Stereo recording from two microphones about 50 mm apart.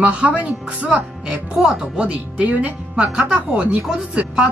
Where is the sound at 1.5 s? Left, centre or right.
Centre.